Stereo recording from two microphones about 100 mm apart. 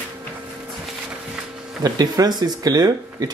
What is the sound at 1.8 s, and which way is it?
Speech, 40° right (ahead or behind).